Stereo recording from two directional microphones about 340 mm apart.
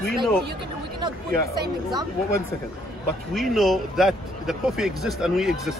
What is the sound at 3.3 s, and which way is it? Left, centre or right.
Speech, centre.